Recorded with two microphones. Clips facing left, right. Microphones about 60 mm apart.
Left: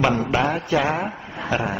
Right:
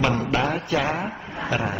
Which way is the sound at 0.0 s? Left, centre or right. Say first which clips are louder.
Left 2 dB; centre.